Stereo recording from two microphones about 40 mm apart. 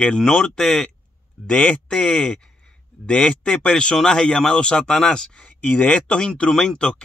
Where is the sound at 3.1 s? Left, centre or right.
Left.